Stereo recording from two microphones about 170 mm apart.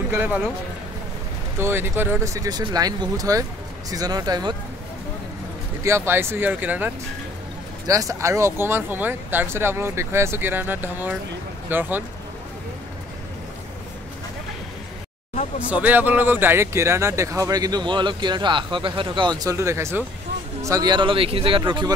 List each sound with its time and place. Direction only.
0.1 s speech: 10° right (ahead or behind)
1.6 s speech: 15° right (ahead or behind)
5.9 s speech: 15° right (ahead or behind)
15.7 s speech: 10° right (ahead or behind); by 21.9 s 30° right (ahead or behind)